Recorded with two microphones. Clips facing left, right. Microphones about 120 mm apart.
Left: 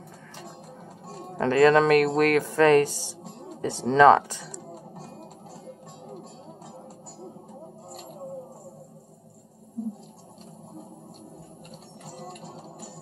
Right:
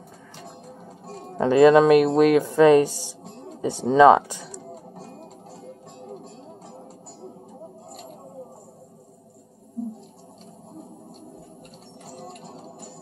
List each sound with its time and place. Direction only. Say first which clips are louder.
1.4 s speech: right 4 dB; 15° right (ahead or behind)